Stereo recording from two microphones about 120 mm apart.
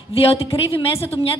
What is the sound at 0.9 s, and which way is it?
Speech, 20° left (ahead or behind).